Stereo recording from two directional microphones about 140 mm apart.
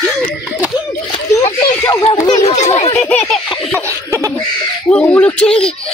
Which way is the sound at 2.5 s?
50° left (ahead or behind).